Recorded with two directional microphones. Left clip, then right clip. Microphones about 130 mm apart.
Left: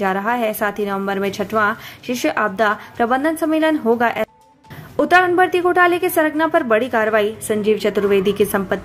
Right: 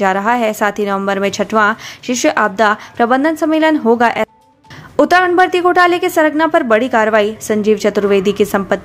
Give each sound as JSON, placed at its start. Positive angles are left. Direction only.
{"t": 0.0, "sound": "a woman's voice", "side_deg": -35}